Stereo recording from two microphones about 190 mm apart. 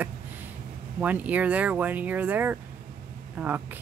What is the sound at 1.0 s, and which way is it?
Speech, 10° right (ahead or behind).